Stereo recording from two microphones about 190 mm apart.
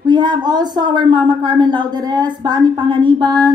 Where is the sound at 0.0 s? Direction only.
25° right (ahead or behind).